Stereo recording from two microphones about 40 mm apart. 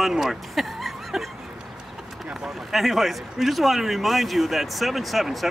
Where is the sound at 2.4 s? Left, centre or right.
Centre.